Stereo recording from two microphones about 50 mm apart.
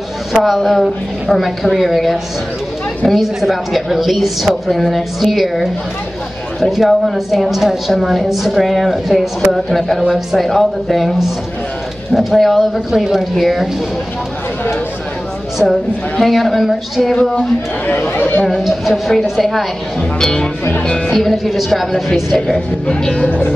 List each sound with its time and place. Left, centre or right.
0.3 s a woman's voice: centre
15.6 s a woman's voice: centre
17.1 s speech: centre
17.8 s speech: left
18.6 s a woman's voice: centre
20.2 s speech: centre
21.1 s a woman's voice: centre
23.0 s speech: centre